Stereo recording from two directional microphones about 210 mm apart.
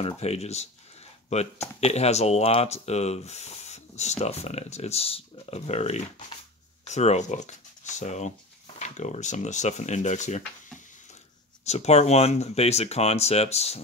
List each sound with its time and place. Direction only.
0.2 s speech: 30° left (ahead or behind)
11.6 s speech: 30° left (ahead or behind)